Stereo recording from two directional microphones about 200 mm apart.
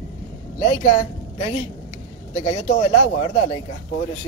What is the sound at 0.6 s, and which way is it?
Speech, 30° left (ahead or behind).